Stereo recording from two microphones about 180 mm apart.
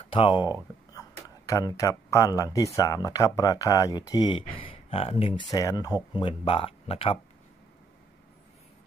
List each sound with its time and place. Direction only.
0.1 s speech: 30° left (ahead or behind)
0.4 s speech: 10° right (ahead or behind)
1.5 s speech: 20° left (ahead or behind)